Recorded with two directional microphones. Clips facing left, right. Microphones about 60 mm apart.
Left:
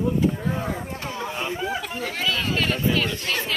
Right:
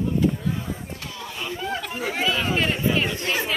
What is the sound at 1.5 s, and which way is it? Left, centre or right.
Speech, centre.